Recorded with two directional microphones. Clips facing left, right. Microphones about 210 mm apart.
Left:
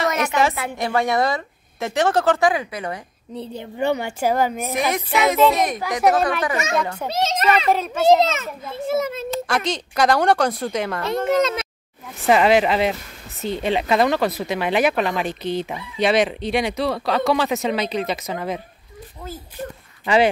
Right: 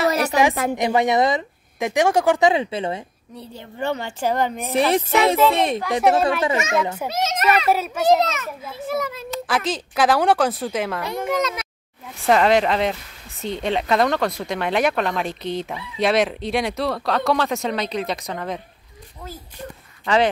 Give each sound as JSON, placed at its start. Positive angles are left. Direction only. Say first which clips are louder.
{"t": 0.1, "sound": "a sound", "louder": "right 2 dB", "side_deg": -35}
{"t": 0.7, "sound": "speech", "louder": "right 1 dB", "side_deg": -20}
{"t": 3.3, "sound": "a woman's voice", "louder": "left 5 dB", "side_deg": 15}
{"t": 4.7, "sound": "music", "louder": "right 5 dB", "side_deg": -30}
{"t": 5.5, "sound": "speech", "louder": "right 1 dB", "side_deg": -30}
{"t": 6.8, "sound": "a child's voice", "louder": "right 1 dB", "side_deg": -5}
{"t": 7.1, "sound": "a child's voice", "louder": "left 2 dB", "side_deg": 30}
{"t": 7.7, "sound": "a child's voice", "louder": "left 2 dB", "side_deg": -5}
{"t": 8.2, "sound": "a child's voice", "louder": "left 2 dB", "side_deg": 25}
{"t": 9.5, "sound": "speech", "louder": "even", "side_deg": -5}
{"t": 11.2, "sound": "a child's voice", "louder": "left 4 dB", "side_deg": 25}
{"t": 12.3, "sound": "speech", "louder": "left 1 dB", "side_deg": 5}